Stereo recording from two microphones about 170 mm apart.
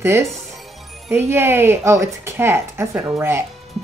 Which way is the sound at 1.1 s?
15° right (ahead or behind).